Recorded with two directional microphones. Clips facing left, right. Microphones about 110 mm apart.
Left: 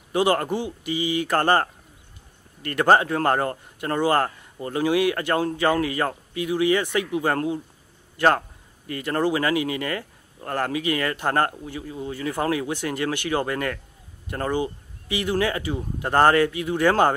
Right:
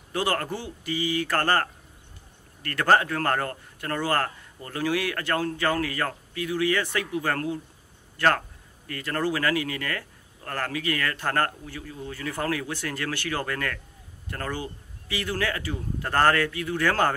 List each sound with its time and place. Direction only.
0.1 s speech: 20° left (ahead or behind)